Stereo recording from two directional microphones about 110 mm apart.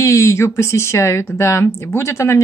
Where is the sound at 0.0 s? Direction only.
25° left (ahead or behind).